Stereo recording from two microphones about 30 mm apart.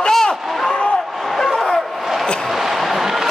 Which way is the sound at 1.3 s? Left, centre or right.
Centre.